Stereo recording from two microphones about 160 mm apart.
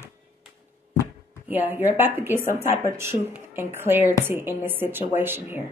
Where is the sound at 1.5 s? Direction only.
10° right (ahead or behind).